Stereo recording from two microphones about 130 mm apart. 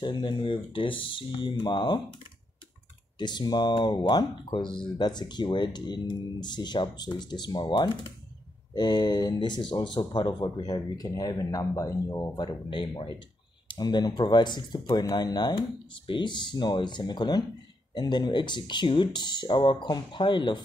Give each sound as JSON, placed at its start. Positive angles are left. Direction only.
{"t": 0.0, "sound": "speech", "side_deg": 35}
{"t": 3.2, "sound": "speech", "side_deg": 35}
{"t": 12.6, "sound": "speech", "side_deg": 40}